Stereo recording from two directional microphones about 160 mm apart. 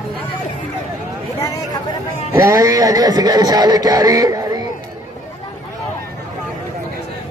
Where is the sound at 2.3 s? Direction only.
20° right (ahead or behind).